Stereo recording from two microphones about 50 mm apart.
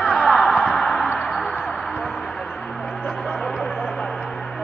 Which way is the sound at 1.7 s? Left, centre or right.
Centre.